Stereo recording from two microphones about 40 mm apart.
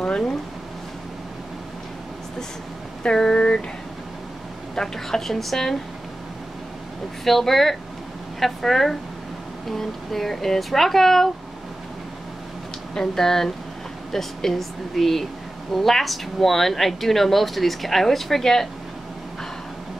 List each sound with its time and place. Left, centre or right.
3.0 s speech: left
4.7 s speech: centre
7.2 s speech: centre
12.9 s speech: centre